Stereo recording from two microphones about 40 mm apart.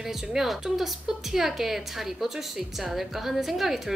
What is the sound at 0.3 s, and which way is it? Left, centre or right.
A woman's voice, centre.